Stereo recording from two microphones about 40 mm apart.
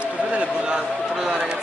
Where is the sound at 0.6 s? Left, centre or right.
Centre.